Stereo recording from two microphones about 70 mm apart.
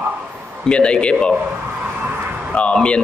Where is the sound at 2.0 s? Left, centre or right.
Right.